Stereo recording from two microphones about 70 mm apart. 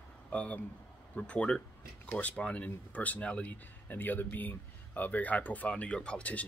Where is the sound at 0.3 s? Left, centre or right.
Centre.